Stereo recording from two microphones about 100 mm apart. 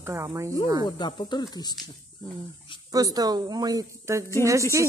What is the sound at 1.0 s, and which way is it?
Speech, 50° left (ahead or behind).